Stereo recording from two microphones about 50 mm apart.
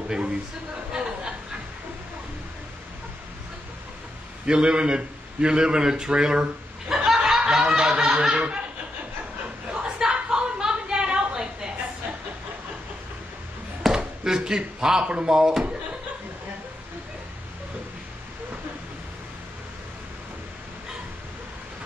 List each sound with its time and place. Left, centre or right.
4.5 s a man's voice: centre
7.1 s snicker: centre
7.5 s speech: centre
9.7 s a sound: centre
13.9 s slam: centre
15.0 s speech: centre